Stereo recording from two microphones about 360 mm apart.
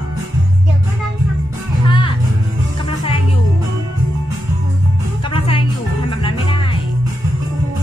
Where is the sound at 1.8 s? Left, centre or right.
Centre.